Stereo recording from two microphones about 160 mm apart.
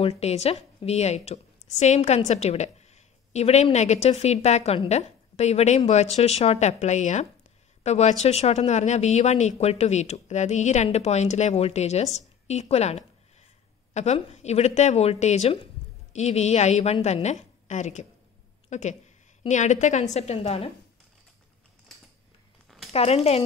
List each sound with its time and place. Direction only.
0.0 s a woman's voice: 40° left (ahead or behind)
22.7 s a sound: centre (ahead or behind)
22.9 s speech: 40° left (ahead or behind)